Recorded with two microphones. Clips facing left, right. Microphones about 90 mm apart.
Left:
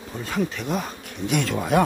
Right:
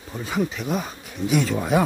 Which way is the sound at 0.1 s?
5° right (ahead or behind).